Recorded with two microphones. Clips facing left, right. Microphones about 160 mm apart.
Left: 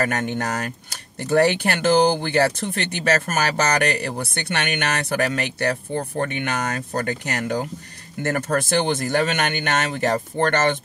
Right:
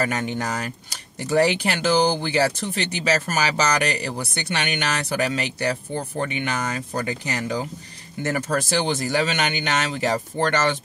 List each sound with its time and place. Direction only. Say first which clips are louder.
0.0 s speech: left 1 dB; 55° left (ahead or behind)